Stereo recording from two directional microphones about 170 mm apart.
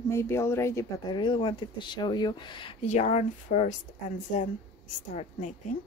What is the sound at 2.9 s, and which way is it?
Speech, 40° left (ahead or behind).